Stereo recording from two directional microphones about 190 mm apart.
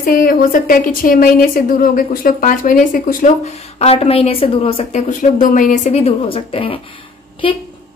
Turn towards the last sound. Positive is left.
turn(degrees=25)  # may be behind; listen again after turning